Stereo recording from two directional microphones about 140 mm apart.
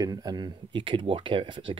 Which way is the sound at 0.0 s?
30° right (ahead or behind).